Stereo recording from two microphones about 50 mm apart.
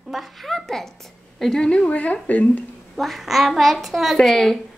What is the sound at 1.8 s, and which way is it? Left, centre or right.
Speech, left.